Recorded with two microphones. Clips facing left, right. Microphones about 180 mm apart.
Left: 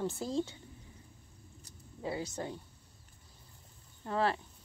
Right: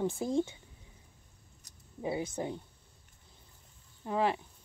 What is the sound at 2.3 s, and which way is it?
Speech, 15° right (ahead or behind).